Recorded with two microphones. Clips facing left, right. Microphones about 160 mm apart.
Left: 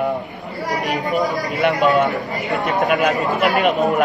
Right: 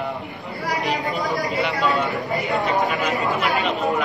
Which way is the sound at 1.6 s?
50° left (ahead or behind).